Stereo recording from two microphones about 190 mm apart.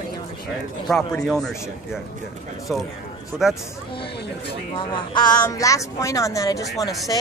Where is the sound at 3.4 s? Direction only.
5° right (ahead or behind).